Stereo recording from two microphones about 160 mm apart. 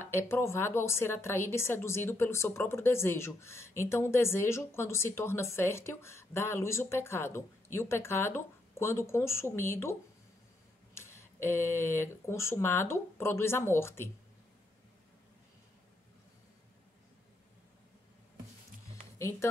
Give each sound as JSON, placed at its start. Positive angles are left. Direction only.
{"t": 0.0, "sound": "a woman's voice", "side_deg": 15}
{"t": 11.0, "sound": "a woman's voice", "side_deg": 15}